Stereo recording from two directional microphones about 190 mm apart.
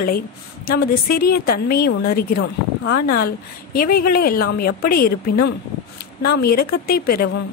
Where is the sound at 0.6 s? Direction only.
55° left (ahead or behind).